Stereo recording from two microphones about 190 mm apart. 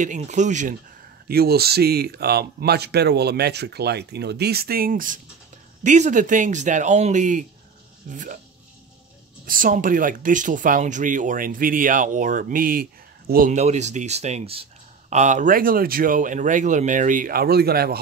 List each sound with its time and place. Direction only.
0.0 s speech: 40° right (ahead or behind)
1.3 s speech: 55° right (ahead or behind)
9.5 s speech: 45° right (ahead or behind)